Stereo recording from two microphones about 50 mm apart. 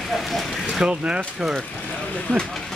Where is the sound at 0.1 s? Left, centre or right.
Centre.